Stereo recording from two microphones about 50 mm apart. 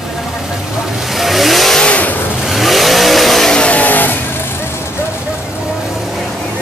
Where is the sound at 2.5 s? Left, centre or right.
Centre.